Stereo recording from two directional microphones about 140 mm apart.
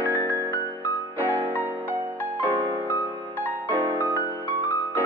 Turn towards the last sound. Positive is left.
turn(degrees=-15)  # may be behind; listen again after turning